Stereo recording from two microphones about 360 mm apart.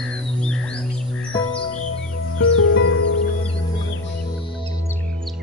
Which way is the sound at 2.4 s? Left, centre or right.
Left.